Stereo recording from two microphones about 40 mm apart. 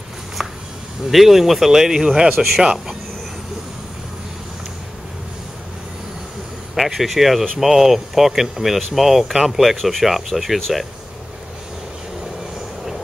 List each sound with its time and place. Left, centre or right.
0.4 s a sound: centre
1.1 s speech: centre
6.7 s speech: centre